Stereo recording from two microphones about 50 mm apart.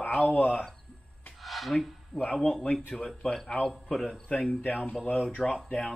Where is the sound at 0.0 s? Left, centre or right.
Left.